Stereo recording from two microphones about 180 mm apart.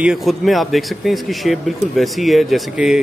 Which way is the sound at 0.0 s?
Centre (ahead or behind).